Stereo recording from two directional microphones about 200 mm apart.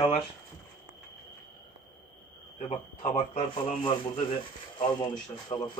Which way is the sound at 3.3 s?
25° left (ahead or behind).